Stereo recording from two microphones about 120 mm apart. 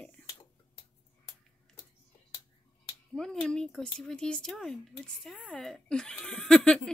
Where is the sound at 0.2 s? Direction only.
10° left (ahead or behind).